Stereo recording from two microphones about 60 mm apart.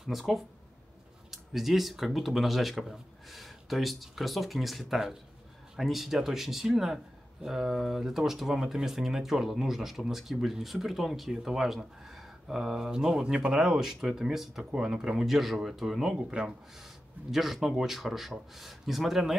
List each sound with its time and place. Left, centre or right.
0.0 s speech: centre
14.6 s speech: centre
17.3 s speech: centre